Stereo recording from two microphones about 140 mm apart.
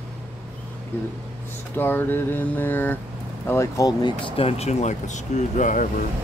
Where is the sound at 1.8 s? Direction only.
15° left (ahead or behind).